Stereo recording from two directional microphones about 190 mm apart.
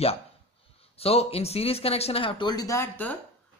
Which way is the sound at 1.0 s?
30° left (ahead or behind).